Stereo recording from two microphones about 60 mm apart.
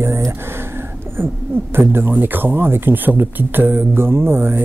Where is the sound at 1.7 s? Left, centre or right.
Right.